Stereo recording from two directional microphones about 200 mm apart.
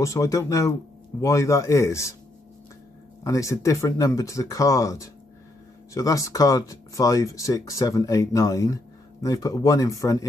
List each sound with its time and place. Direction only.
0.0 s speech: 15° left (ahead or behind)
3.3 s speech: 15° left (ahead or behind)